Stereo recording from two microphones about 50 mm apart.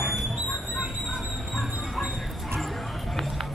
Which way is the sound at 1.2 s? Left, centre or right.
Centre.